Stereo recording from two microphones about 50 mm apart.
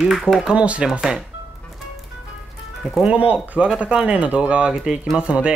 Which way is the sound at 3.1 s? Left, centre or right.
Right.